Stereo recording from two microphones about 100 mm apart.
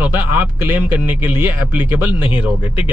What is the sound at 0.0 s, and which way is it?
Speech, 20° right (ahead or behind).